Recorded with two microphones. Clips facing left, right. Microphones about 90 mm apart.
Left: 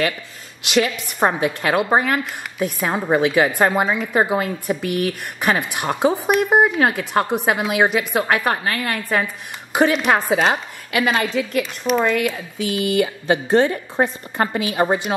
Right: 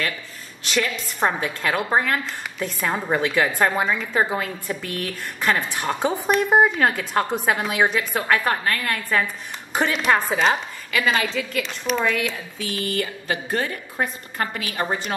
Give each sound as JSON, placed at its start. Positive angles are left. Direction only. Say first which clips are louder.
{"t": 1.2, "sound": "a woman's voice", "louder": "left 4 dB", "side_deg": 15}